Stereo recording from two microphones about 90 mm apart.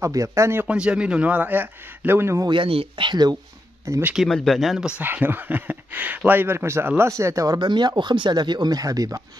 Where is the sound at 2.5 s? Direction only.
80° right; by 3.3 s 55° right (ahead or behind).